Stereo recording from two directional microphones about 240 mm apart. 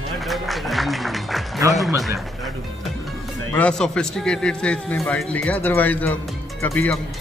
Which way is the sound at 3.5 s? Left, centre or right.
Centre.